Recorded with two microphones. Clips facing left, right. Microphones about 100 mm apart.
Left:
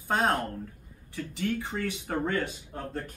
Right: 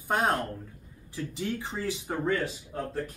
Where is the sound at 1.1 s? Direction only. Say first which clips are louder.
Left 2 dB; 20° right (ahead or behind).